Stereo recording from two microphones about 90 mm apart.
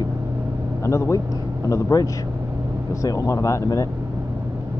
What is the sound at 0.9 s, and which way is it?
Speech, 35° left (ahead or behind).